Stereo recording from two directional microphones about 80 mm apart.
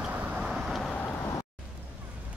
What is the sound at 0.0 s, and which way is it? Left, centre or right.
Vehicle, centre.